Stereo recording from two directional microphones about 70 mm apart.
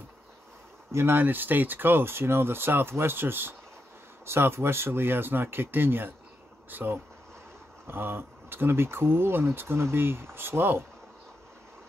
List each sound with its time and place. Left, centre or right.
0.9 s speech: right